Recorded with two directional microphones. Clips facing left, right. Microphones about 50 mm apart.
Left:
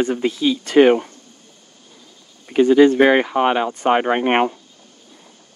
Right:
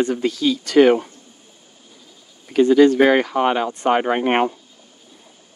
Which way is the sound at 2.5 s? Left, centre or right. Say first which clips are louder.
Left 1 dB; left.